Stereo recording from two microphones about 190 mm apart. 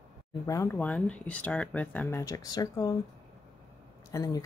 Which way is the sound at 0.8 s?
5° left (ahead or behind).